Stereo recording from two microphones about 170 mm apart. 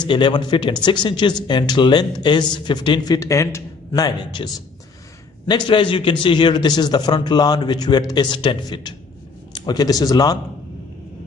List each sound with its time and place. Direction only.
0.0 s a man's voice: 25° left (ahead or behind)
5.5 s a man's voice: 30° left (ahead or behind)